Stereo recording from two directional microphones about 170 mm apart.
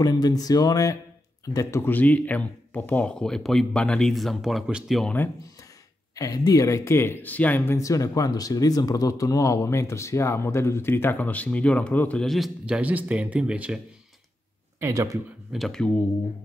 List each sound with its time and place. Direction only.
0.0 s speech: 25° left (ahead or behind); by 5.1 s centre (ahead or behind)
6.1 s speech: 20° left (ahead or behind); by 13.7 s 5° right (ahead or behind)
14.8 s speech: 15° right (ahead or behind)
15.5 s speech: centre (ahead or behind)